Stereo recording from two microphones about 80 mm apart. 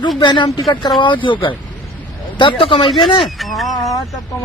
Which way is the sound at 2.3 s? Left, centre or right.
Left.